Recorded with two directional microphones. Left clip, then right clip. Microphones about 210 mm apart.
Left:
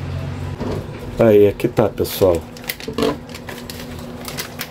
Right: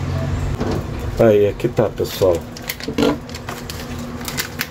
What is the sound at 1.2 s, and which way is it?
Speech, 20° left (ahead or behind).